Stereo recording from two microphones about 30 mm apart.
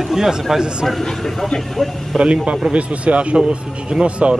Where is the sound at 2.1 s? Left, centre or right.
Right.